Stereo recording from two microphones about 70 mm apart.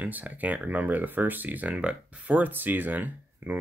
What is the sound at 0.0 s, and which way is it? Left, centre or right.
Speech, right.